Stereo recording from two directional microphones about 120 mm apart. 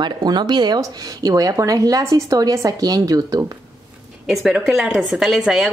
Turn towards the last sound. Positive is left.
turn(degrees=-5)  # may be behind; listen again after turning